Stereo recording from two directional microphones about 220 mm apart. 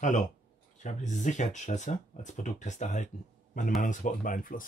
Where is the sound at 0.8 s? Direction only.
35° left (ahead or behind).